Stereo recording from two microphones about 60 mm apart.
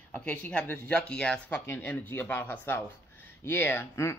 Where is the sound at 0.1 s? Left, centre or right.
Left.